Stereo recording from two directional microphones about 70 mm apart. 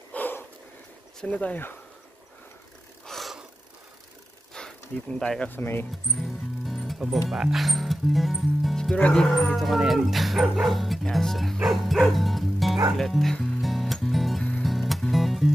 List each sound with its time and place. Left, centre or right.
0.1 s a sound: left
1.2 s speech: centre
3.1 s gasp: centre
4.6 s a sound: centre
5.5 s speech: left
6.1 s speech: centre
9.6 s speech: centre
12.9 s music: centre